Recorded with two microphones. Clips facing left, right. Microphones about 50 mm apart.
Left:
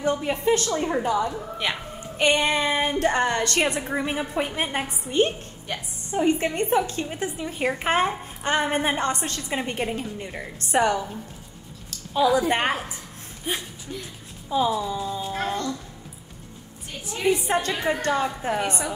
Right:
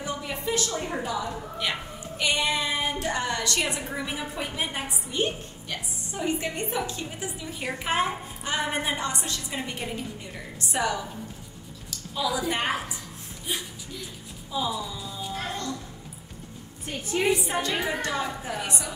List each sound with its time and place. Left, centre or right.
0.0 s a woman's voice: left
12.1 s a woman's voice: left
16.8 s a woman's voice: right
17.5 s a woman's voice: left